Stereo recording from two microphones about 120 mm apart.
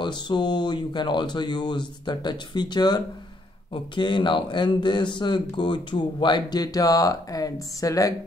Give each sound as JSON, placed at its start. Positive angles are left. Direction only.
{"t": 0.0, "sound": "speech", "side_deg": 40}